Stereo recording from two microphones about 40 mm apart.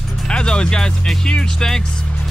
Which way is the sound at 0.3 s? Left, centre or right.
Left.